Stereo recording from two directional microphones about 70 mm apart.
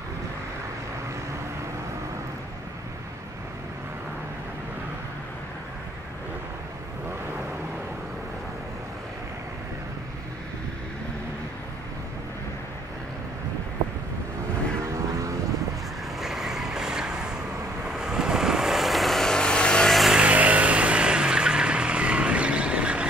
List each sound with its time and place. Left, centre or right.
16.2 s vehicle: centre
19.9 s a sound: centre
20.2 s vehicle: centre